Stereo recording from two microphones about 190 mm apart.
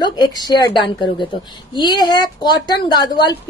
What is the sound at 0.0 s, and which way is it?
A woman's voice, 20° left (ahead or behind).